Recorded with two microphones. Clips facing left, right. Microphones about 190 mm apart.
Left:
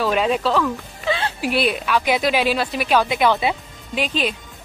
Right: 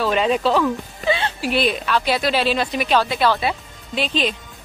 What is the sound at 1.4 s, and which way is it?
A woman's voice, 10° left (ahead or behind).